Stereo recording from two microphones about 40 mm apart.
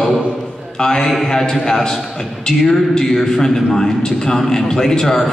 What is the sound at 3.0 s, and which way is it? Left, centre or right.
A man's voice, centre.